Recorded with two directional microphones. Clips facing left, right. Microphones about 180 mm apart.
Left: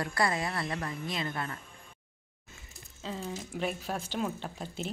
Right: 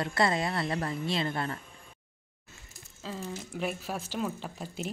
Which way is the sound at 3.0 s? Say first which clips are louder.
Even; centre (ahead or behind).